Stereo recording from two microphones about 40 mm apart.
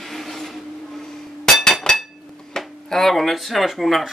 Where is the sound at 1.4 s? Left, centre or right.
Centre.